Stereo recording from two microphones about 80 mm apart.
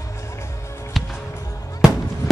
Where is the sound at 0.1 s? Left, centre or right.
Left.